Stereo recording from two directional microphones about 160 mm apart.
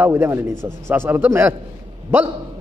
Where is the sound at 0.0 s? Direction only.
15° right (ahead or behind).